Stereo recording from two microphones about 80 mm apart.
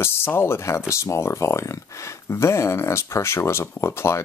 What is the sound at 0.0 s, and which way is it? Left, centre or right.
Speech, left.